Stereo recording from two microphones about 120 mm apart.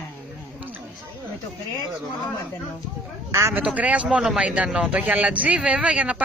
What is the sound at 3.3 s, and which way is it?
Speech, 25° right (ahead or behind).